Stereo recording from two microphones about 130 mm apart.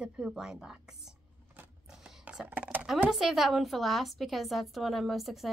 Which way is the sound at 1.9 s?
5° right (ahead or behind).